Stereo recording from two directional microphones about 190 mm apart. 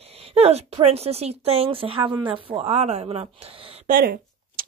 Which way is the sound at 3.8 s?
50° right (ahead or behind).